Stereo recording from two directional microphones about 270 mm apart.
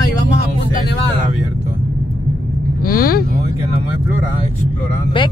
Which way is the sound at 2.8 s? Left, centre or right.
Left.